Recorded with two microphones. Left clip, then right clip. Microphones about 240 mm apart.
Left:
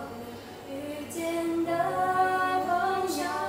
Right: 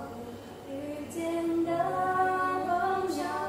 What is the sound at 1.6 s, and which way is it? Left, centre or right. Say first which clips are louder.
Music: left 3 dB; centre.